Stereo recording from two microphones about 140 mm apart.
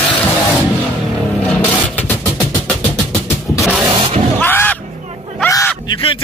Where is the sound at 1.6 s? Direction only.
15° left (ahead or behind).